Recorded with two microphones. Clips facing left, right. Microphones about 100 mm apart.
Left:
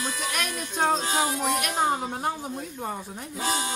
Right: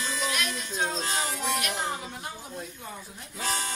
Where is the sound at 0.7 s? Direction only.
55° left (ahead or behind).